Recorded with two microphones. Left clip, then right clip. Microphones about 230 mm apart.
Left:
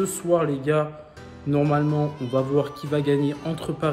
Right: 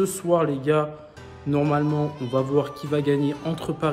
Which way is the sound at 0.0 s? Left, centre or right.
Centre.